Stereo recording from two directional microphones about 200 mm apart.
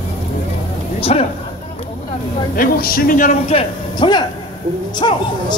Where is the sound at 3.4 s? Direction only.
25° left (ahead or behind).